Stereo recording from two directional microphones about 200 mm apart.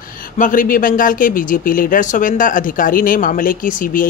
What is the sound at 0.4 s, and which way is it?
Speech, 40° left (ahead or behind).